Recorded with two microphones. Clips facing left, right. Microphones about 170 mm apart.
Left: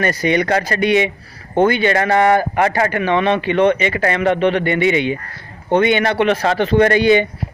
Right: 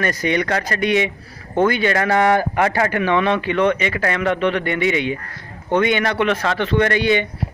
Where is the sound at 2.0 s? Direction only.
15° left (ahead or behind).